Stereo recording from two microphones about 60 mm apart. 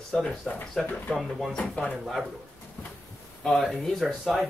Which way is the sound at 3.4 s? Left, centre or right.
Centre.